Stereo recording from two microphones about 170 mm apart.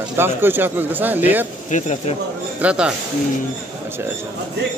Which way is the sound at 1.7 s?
45° left (ahead or behind).